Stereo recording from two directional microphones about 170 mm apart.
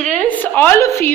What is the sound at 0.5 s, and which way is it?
Speech, 10° left (ahead or behind).